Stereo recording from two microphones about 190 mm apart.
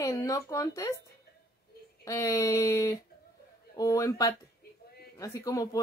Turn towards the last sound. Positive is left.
turn(degrees=20)  # may be behind; listen again after turning